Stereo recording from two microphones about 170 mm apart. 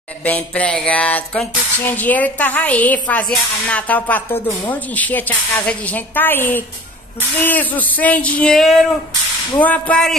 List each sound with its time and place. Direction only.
0.2 s music: 10° left (ahead or behind)